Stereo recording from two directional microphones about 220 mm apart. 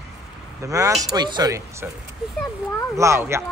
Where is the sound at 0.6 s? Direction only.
15° right (ahead or behind).